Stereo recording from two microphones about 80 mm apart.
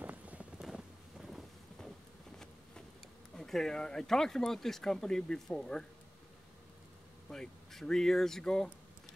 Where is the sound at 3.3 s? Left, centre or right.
Centre.